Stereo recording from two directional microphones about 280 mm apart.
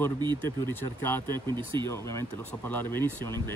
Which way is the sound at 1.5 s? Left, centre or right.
Centre.